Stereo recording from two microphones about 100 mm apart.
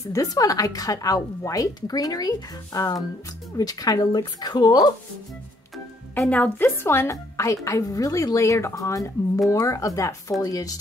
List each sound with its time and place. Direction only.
0.0 s a woman's voice: 35° left (ahead or behind)
6.2 s a woman's voice: 15° left (ahead or behind); by 10.8 s 35° left (ahead or behind)